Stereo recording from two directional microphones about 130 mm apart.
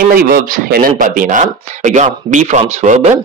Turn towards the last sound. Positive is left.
turn(degrees=-65)  # may be behind; listen again after turning